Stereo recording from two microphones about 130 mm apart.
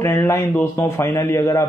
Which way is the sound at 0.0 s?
20° left (ahead or behind).